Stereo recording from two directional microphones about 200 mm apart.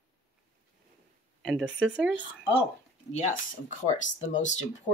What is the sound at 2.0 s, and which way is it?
Speech, 5° right (ahead or behind).